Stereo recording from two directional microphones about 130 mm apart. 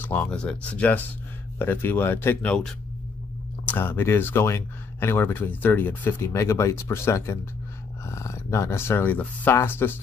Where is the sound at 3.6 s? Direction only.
15° left (ahead or behind).